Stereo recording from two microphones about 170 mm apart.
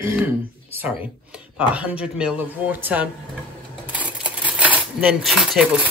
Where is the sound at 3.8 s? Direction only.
10° right (ahead or behind).